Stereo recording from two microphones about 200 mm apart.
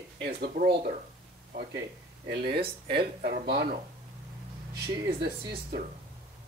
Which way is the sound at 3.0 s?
50° right (ahead or behind).